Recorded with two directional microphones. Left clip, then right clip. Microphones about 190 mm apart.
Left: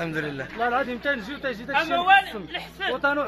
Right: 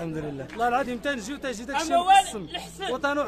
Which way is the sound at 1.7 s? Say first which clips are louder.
Even; 65° right (ahead or behind).